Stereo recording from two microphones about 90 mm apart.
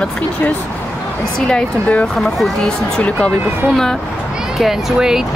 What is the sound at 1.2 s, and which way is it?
Speech, 5° left (ahead or behind).